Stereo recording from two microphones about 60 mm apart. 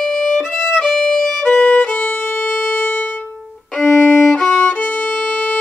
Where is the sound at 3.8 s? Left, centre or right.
Centre.